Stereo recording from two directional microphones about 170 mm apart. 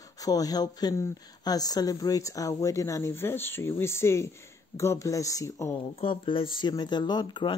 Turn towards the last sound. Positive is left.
turn(degrees=25)  # may be behind; listen again after turning